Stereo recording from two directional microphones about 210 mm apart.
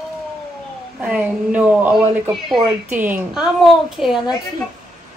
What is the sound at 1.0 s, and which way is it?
A woman's voice, 5° right (ahead or behind).